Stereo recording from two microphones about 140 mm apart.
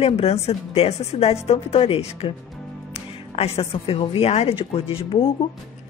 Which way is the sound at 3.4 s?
45° left (ahead or behind).